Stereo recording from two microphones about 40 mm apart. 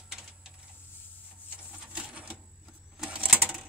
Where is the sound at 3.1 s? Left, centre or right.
Right.